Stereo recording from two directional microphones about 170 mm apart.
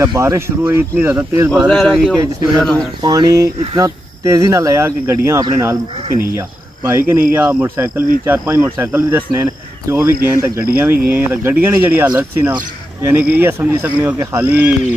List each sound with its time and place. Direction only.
0.0 s speech: 20° right (ahead or behind)
1.7 s speech: centre (ahead or behind)
3.0 s speech: 20° right (ahead or behind)